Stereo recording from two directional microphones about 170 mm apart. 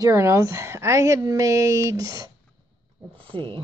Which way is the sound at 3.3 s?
30° right (ahead or behind).